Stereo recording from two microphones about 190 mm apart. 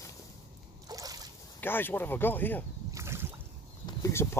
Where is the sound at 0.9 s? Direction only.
20° right (ahead or behind).